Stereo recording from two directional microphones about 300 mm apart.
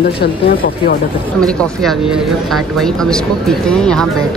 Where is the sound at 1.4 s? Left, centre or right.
Centre.